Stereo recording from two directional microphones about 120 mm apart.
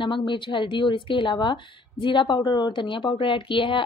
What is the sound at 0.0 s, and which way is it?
A woman's voice, 40° left (ahead or behind).